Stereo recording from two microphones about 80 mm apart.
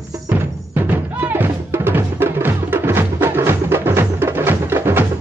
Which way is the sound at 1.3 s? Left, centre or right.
Right.